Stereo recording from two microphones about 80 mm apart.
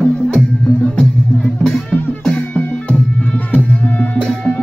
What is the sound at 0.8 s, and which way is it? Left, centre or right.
Music, centre.